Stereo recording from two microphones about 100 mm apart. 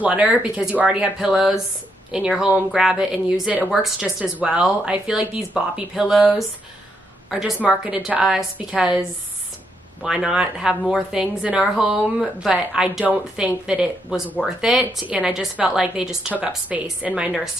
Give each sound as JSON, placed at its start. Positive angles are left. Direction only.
{"t": 0.0, "sound": "a woman's voice", "side_deg": -10}
{"t": 10.0, "sound": "a woman's voice", "side_deg": -10}